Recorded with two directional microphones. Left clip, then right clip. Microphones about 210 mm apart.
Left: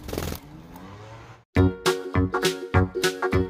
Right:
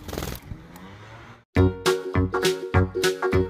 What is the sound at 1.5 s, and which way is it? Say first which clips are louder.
Music: right 1 dB; centre (ahead or behind).